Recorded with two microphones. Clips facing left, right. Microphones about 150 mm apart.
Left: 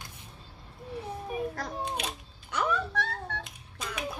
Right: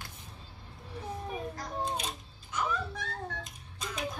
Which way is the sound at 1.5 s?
65° left (ahead or behind).